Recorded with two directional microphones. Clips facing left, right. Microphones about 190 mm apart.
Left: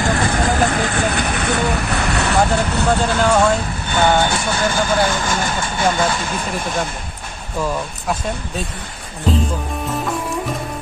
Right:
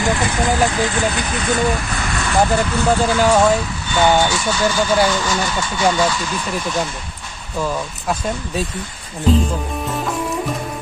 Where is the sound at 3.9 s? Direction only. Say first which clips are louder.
Right 1 dB; 55° left (ahead or behind).